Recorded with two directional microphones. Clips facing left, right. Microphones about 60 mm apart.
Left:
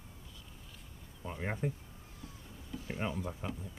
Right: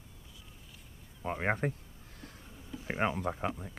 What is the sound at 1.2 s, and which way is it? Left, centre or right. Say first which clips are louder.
Speech: right 6 dB; right.